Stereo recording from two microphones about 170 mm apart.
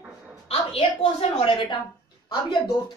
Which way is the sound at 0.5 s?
35° left (ahead or behind).